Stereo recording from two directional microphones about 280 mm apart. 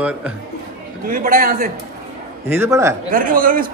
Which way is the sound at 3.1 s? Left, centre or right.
Right.